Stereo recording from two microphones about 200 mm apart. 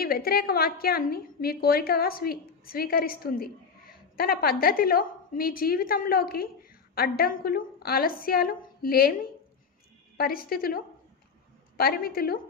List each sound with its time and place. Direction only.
0.0 s a woman's voice: 50° left (ahead or behind)